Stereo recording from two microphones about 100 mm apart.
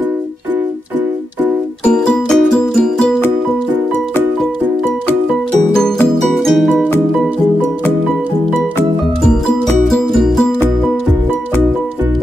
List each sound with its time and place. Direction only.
1.9 s music: 5° left (ahead or behind)
6.3 s music: centre (ahead or behind)
9.2 s music: 5° left (ahead or behind)